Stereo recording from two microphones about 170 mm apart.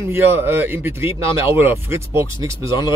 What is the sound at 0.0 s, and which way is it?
Speech, 15° right (ahead or behind).